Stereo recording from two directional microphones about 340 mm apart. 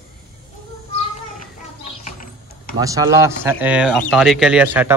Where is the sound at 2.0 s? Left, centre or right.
Left.